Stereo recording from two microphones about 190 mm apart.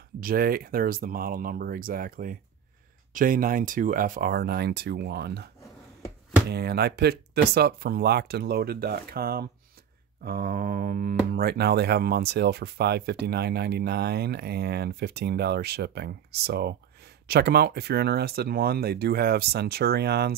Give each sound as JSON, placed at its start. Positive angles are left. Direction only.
{"t": 0.2, "sound": "speech", "side_deg": -50}
{"t": 6.5, "sound": "speech", "side_deg": -60}